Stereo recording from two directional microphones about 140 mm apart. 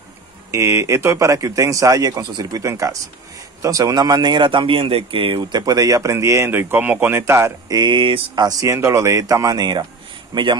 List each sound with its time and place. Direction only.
0.5 s a man's voice: 20° right (ahead or behind)